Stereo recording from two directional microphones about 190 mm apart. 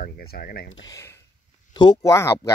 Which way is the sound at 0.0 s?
50° left (ahead or behind).